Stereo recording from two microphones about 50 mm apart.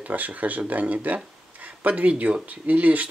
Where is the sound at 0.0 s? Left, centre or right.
Right.